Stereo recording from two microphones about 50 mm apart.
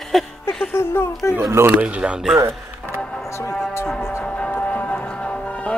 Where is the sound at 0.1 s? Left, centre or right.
Centre.